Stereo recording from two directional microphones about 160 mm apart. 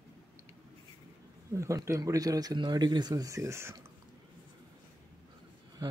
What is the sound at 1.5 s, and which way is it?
Speech, 20° right (ahead or behind).